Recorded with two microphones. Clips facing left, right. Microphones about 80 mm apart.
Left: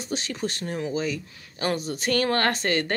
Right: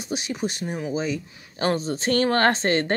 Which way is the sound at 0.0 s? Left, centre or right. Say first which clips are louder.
Right 2 dB; centre.